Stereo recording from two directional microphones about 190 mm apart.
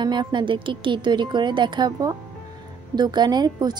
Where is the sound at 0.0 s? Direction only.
25° right (ahead or behind).